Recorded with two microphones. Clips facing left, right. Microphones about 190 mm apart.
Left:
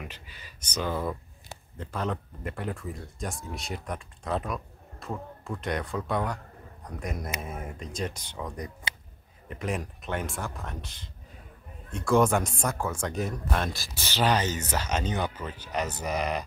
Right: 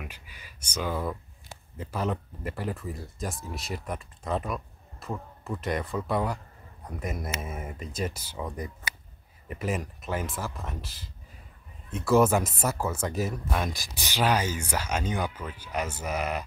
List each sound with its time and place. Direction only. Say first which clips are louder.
0.0 s a man's voice: left 1 dB; 10° right (ahead or behind)
8.9 s a sound: left 1 dB; 25° left (ahead or behind)
9.5 s speech: right 1 dB; 5° right (ahead or behind)
13.7 s speech: even; 15° right (ahead or behind)